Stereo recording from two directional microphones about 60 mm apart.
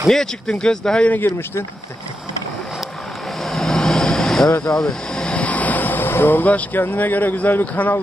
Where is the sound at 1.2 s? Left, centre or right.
Left.